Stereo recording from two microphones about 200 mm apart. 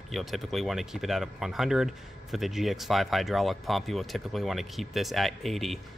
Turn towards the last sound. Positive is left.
turn(degrees=0)  # may be behind; listen again after turning